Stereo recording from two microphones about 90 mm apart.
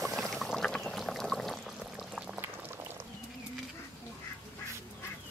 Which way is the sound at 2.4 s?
25° right (ahead or behind).